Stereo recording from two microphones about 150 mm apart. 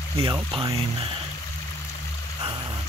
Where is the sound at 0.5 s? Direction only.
35° right (ahead or behind).